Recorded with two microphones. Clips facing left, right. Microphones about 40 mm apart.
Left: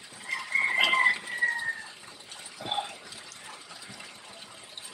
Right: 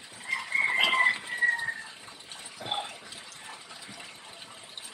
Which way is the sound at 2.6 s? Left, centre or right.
Centre.